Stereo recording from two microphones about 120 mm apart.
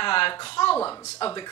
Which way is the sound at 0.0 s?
45° left (ahead or behind).